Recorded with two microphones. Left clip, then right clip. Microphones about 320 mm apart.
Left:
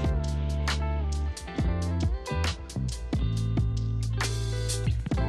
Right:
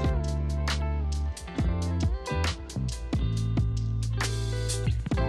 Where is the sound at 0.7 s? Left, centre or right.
Centre.